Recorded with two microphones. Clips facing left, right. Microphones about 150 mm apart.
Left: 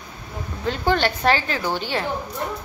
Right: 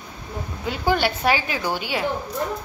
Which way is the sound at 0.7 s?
10° right (ahead or behind).